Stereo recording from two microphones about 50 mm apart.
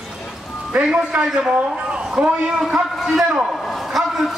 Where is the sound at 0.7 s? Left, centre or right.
Right.